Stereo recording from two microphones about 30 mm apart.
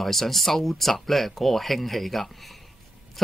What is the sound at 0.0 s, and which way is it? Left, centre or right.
A man's voice, centre.